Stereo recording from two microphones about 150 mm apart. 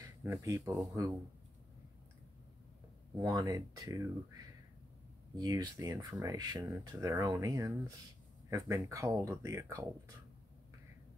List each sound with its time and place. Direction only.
0.0 s speech: 20° right (ahead or behind)
3.2 s speech: 25° right (ahead or behind)